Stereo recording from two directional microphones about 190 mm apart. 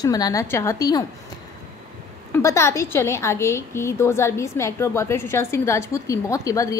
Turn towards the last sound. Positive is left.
turn(degrees=15)  # may be behind; listen again after turning